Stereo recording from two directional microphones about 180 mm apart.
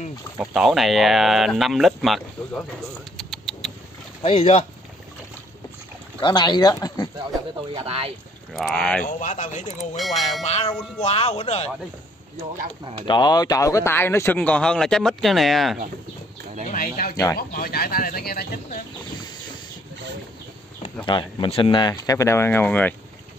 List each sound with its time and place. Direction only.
0.4 s speech: centre (ahead or behind)
3.2 s rodents: centre (ahead or behind)
4.2 s speech: 35° left (ahead or behind)
6.2 s speech: 25° left (ahead or behind)
7.7 s speech: 30° right (ahead or behind)
8.5 s speech: 5° left (ahead or behind)
9.0 s speech: 45° left (ahead or behind)
9.9 s speech: centre (ahead or behind)
10.4 s speech: 40° left (ahead or behind)
13.0 s speech: 25° left (ahead or behind); by 15.8 s centre (ahead or behind)
16.6 s speech: 50° left (ahead or behind)
20.8 s speech: 25° left (ahead or behind); by 22.9 s 10° left (ahead or behind)